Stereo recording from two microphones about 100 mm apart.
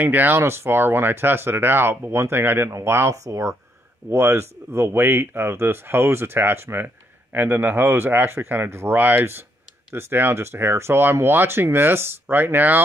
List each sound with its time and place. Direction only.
0.0 s speech: 20° right (ahead or behind)